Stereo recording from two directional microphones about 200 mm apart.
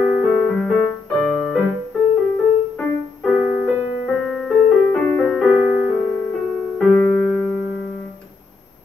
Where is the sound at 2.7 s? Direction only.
5° left (ahead or behind).